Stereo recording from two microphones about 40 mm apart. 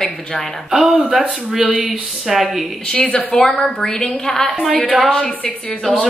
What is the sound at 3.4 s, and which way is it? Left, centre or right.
A woman's voice, centre.